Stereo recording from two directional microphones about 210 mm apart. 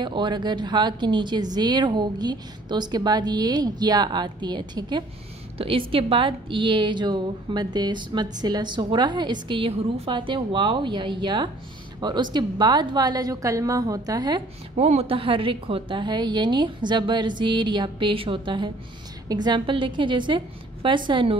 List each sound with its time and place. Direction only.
0.0 s a woman's voice: 20° right (ahead or behind)